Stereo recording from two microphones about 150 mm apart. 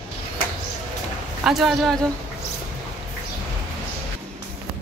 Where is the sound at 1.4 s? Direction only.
Centre (ahead or behind).